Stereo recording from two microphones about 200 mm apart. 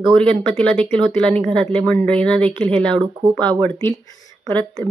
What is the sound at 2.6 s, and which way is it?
Speech, 25° right (ahead or behind).